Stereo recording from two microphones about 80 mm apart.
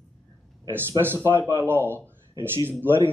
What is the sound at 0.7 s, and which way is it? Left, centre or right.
Speech, right.